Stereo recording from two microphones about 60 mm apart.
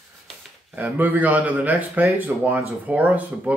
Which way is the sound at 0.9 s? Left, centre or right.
Right.